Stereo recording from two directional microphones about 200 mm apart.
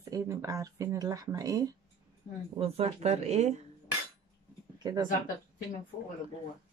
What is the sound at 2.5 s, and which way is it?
Speech, 30° right (ahead or behind).